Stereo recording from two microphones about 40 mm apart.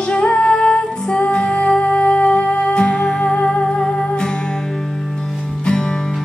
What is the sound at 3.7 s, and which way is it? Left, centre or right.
Music, left.